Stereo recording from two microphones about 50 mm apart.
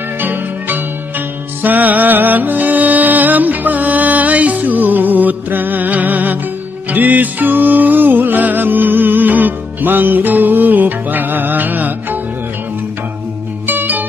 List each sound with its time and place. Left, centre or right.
0.2 s music: right
13.7 s music: right